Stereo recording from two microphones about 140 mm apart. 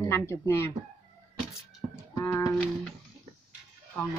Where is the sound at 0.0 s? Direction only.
20° left (ahead or behind).